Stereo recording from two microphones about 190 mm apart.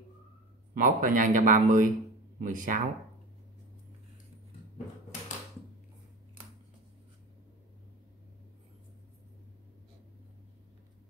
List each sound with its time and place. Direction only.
0.7 s speech: 45° right (ahead or behind)